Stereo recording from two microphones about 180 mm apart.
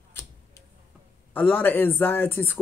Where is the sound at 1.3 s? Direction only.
10° left (ahead or behind).